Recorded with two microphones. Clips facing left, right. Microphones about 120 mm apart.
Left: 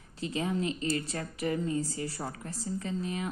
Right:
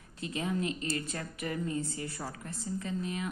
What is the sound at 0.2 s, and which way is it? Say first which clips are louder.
A woman's voice: left 2 dB; 30° left (ahead or behind).